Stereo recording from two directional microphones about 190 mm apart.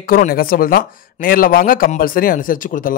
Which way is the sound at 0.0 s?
50° left (ahead or behind).